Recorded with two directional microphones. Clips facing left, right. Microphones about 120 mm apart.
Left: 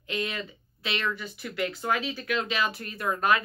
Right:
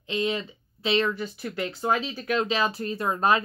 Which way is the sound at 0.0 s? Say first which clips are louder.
Right 5 dB; 25° right (ahead or behind).